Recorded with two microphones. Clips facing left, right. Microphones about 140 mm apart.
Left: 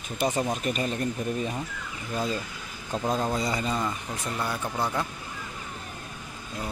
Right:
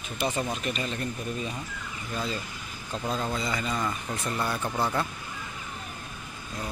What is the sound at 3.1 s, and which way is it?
Speech, 35° left (ahead or behind).